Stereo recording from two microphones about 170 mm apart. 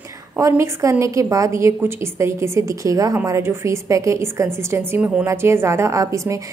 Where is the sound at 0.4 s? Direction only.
15° right (ahead or behind).